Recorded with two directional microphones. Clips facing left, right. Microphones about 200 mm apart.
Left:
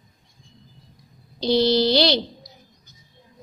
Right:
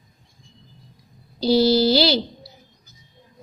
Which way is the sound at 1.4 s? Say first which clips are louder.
Right 2 dB; 5° right (ahead or behind).